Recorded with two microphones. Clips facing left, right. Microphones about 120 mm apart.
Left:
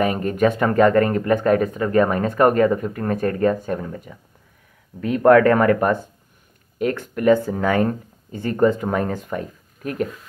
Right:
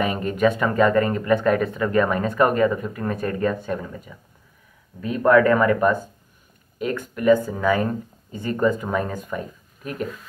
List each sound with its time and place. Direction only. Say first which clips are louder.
0.0 s speech: left 2 dB; 45° left (ahead or behind)
5.0 s speech: left 3 dB; 65° left (ahead or behind)